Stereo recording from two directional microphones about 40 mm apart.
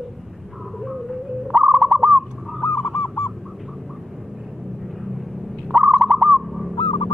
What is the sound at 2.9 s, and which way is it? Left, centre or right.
Goose, left.